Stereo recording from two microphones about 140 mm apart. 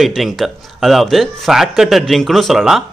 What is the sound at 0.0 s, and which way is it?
Speech, centre (ahead or behind).